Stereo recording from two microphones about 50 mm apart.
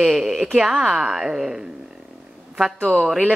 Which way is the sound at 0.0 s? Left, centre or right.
Centre.